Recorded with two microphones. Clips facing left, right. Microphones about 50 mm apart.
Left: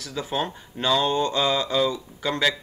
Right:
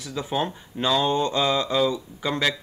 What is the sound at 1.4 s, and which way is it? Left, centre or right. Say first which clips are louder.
Speech: even; centre.